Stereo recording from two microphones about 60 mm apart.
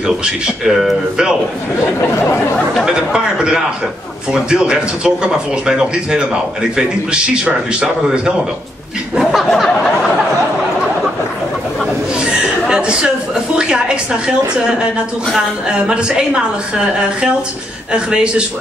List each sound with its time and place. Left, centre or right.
0.0 s speech: centre
2.8 s speech: centre
9.1 s speech: centre
12.2 s speech: centre
15.3 s speech: centre